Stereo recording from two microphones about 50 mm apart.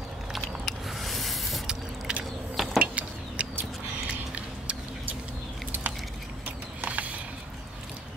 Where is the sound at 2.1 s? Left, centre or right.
Centre.